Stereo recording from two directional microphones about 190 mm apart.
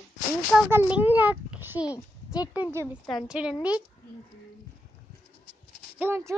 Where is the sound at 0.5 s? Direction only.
10° right (ahead or behind).